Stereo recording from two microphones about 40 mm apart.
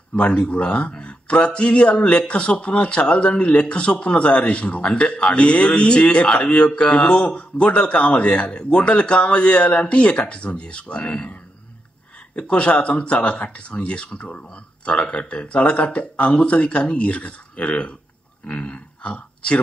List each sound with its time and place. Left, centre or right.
0.1 s speech: left
12.4 s speech: left